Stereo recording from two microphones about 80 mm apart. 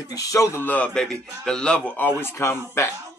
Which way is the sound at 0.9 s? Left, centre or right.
Centre.